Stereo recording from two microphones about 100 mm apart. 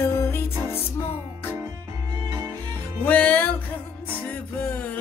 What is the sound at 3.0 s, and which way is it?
Music, 15° left (ahead or behind).